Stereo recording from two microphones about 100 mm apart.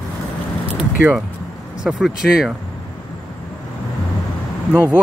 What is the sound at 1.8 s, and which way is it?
Speech, 5° right (ahead or behind).